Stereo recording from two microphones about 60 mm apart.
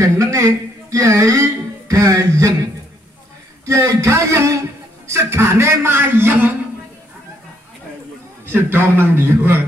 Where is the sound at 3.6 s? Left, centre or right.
Right.